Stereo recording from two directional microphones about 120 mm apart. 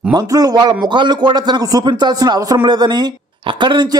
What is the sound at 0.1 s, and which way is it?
A man's voice, 30° right (ahead or behind).